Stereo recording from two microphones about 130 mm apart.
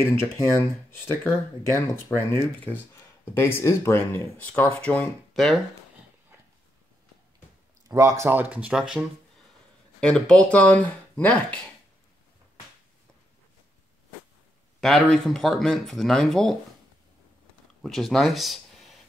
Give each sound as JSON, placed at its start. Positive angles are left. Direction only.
{"t": 0.0, "sound": "speech", "side_deg": 20}
{"t": 7.9, "sound": "speech", "side_deg": -20}
{"t": 9.9, "sound": "speech", "side_deg": 5}
{"t": 14.8, "sound": "speech", "side_deg": 5}
{"t": 17.8, "sound": "speech", "side_deg": 0}